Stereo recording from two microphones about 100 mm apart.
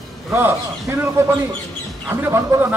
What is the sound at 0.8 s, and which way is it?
Speech, 35° right (ahead or behind).